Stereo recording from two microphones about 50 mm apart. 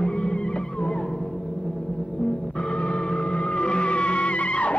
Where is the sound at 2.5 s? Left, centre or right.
Centre.